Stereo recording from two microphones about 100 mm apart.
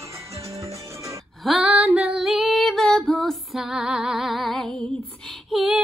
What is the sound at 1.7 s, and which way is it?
Female singing, 10° right (ahead or behind).